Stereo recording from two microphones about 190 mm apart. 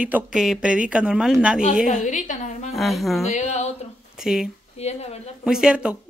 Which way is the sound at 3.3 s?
35° left (ahead or behind).